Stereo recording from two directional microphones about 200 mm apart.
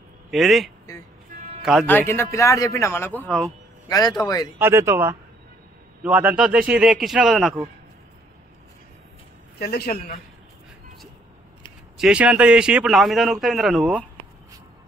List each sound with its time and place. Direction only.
0.3 s a man's voice: centre (ahead or behind)
2.0 s a man's voice: 10° left (ahead or behind)
3.9 s a man's voice: 20° left (ahead or behind)
4.6 s a man's voice: 10° right (ahead or behind)
9.6 s a man's voice: 55° left (ahead or behind)
12.0 s a man's voice: 5° right (ahead or behind)